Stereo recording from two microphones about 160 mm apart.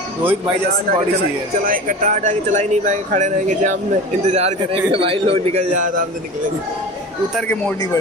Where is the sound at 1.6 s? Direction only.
60° right (ahead or behind).